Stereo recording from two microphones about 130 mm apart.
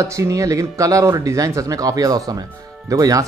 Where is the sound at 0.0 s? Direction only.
25° right (ahead or behind).